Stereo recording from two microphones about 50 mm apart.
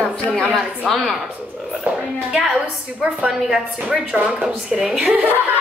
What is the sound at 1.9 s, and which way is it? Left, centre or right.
A woman's voice, centre.